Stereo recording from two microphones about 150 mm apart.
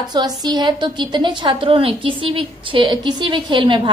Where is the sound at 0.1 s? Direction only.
30° right (ahead or behind).